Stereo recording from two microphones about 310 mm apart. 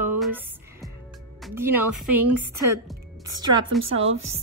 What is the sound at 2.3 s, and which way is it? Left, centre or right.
Speech, right.